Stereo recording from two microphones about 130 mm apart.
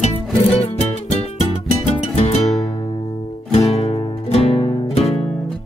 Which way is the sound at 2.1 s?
55° left (ahead or behind).